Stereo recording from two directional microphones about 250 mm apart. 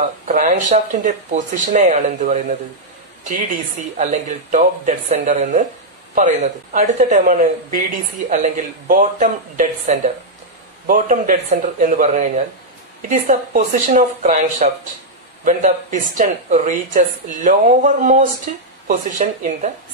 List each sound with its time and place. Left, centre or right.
0.0 s speech: right